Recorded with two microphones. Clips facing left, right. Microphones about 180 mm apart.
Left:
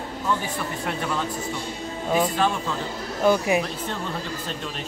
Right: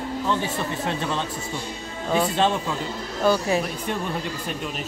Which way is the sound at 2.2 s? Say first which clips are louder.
Right 2 dB; 25° right (ahead or behind).